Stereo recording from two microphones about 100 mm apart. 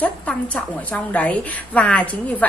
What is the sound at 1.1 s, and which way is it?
A woman's voice, 15° left (ahead or behind).